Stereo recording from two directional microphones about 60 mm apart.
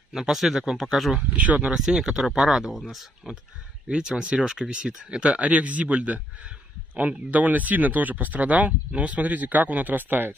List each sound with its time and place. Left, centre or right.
0.1 s speech: centre
1.3 s speech: right
1.8 s speech: centre
3.9 s speech: centre; by 10.3 s right